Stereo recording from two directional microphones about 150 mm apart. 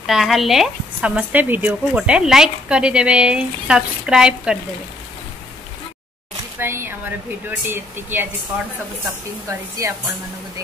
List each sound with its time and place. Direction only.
0.0 s a woman's voice: centre (ahead or behind)
6.6 s a woman's voice: 15° right (ahead or behind)
9.5 s speech: 20° right (ahead or behind)